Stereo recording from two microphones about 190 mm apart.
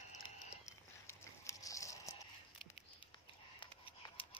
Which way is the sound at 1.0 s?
15° left (ahead or behind).